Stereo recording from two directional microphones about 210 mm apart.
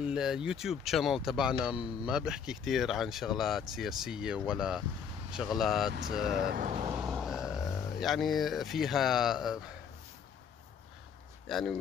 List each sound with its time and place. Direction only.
0.0 s speech: 5° right (ahead or behind)
6.5 s speech: 40° right (ahead or behind)
7.0 s speech: centre (ahead or behind)
11.4 s speech: centre (ahead or behind)